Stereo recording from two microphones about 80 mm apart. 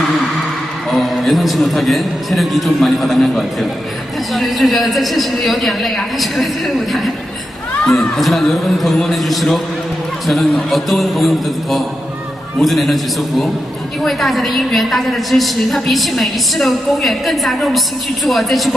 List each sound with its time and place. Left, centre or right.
0.8 s a woman's voice: centre